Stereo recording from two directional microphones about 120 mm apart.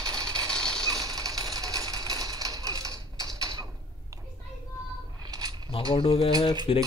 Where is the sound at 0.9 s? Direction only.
30° right (ahead or behind).